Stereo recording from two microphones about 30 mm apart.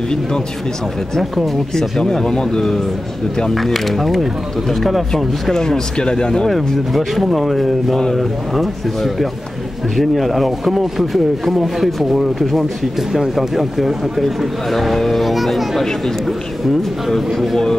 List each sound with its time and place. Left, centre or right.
1.8 s speech: left
3.5 s speech: centre
5.1 s speech: centre
5.9 s speech: left
6.5 s speech: centre
17.3 s speech: centre